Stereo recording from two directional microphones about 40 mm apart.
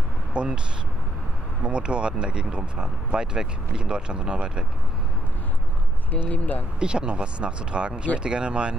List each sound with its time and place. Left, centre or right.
0.3 s speech: right
1.6 s speech: right
6.3 s speech: left
6.8 s speech: right